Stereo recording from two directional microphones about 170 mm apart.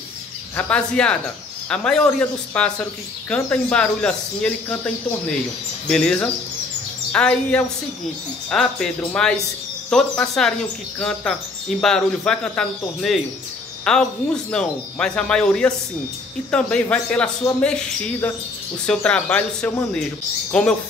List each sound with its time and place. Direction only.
0.6 s a man's voice: 5° left (ahead or behind)